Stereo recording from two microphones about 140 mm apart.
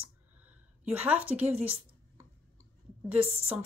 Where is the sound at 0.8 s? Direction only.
10° right (ahead or behind).